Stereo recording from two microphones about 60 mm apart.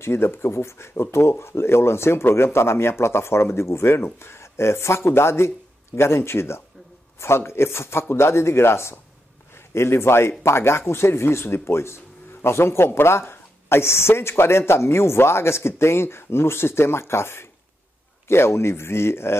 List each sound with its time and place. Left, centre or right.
0.0 s speech: left